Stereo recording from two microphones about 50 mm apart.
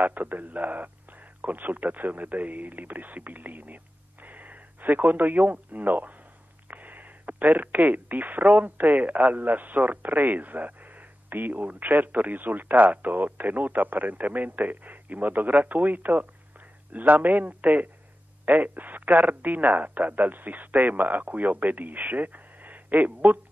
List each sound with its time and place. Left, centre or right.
0.0 s speech: right